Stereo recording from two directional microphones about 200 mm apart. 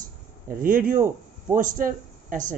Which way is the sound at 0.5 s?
45° right (ahead or behind).